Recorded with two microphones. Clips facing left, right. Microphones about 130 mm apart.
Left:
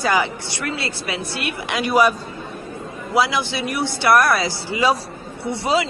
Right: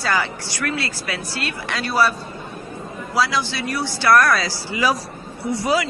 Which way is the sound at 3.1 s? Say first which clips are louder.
Left 2 dB; 20° left (ahead or behind).